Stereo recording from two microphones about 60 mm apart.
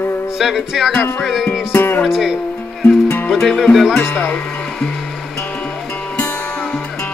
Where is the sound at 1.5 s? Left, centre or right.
Left.